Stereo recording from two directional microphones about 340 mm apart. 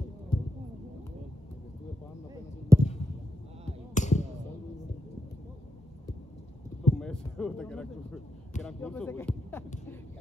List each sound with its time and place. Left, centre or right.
0.3 s basketball bounce: centre
2.7 s a sound: centre
3.9 s basketball bounce: left
7.0 s speech: centre